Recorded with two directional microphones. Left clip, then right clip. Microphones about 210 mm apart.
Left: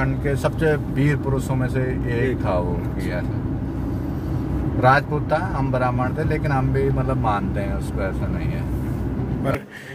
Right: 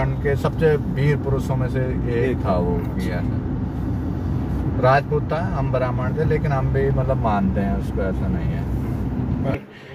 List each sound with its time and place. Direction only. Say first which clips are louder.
0.0 s speech: even; 50° left (ahead or behind)
4.8 s speech: even; 50° left (ahead or behind)